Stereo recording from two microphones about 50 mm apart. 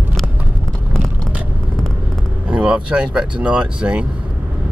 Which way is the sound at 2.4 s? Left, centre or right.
Centre.